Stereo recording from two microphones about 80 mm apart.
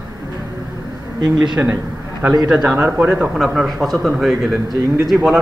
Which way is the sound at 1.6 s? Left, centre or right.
Centre.